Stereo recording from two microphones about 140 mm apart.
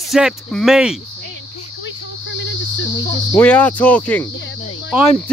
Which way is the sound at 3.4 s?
10° left (ahead or behind).